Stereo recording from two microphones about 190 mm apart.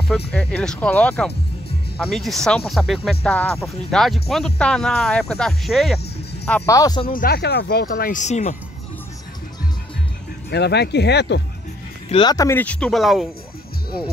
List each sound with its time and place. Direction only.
0.3 s speech: 5° left (ahead or behind)
6.4 s speech: 10° left (ahead or behind)
7.1 s speech: 50° left (ahead or behind)
10.5 s speech: 60° left (ahead or behind)
12.1 s speech: 25° left (ahead or behind); by 13.3 s centre (ahead or behind)